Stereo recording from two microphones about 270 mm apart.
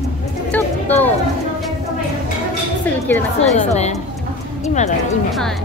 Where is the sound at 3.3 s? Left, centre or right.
Left.